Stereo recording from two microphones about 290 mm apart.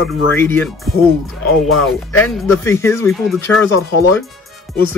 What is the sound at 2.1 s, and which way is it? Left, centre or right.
Speech, centre.